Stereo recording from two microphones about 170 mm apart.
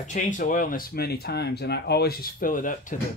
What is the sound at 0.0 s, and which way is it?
Speech, 45° left (ahead or behind).